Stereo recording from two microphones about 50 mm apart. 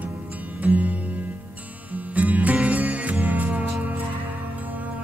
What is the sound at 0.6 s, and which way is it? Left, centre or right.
Music, right.